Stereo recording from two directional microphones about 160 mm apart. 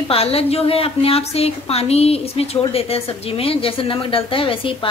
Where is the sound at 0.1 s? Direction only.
35° left (ahead or behind).